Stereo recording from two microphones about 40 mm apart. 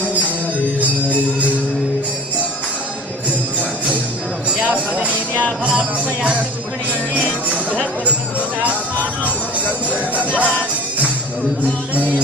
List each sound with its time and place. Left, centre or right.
4.6 s music: right
5.7 s music: right
10.1 s music: right